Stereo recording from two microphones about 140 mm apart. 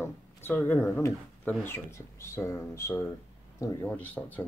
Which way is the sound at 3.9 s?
10° left (ahead or behind).